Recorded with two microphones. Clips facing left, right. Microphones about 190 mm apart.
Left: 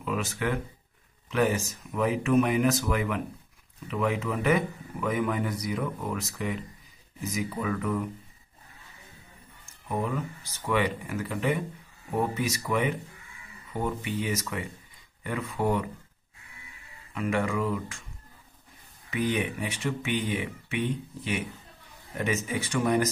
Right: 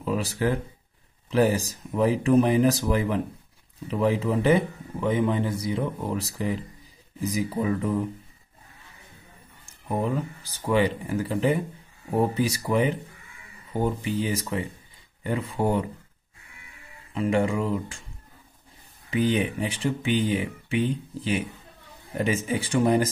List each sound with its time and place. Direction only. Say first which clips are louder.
0.0 s a man's voice: right 4 dB; 35° right (ahead or behind)
9.8 s a man's voice: right 4 dB; 30° right (ahead or behind)
17.1 s speech: right 4 dB; 30° right (ahead or behind)
19.0 s a man's voice: right 4 dB; 30° right (ahead or behind)